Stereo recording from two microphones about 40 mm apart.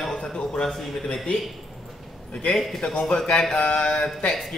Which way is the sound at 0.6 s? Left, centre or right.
Centre.